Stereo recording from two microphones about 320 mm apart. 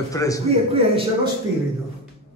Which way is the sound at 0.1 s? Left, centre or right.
Centre.